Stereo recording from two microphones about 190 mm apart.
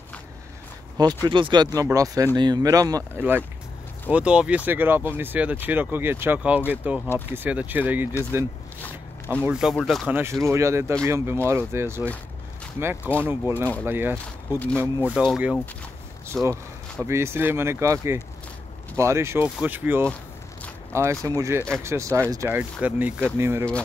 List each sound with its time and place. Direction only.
0.9 s speech: 20° right (ahead or behind); by 10.0 s centre (ahead or behind)
10.0 s speech: 10° right (ahead or behind)
13.2 s speech: 10° right (ahead or behind)